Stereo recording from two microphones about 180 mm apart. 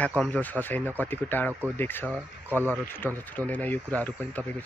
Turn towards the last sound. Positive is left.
turn(degrees=10)  # may be behind; listen again after turning